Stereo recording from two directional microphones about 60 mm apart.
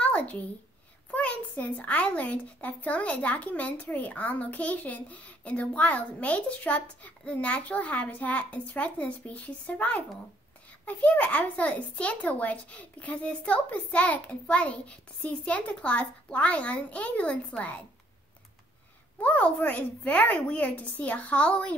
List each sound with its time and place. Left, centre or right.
0.0 s a sound: left
1.1 s speech: left
19.2 s speech: left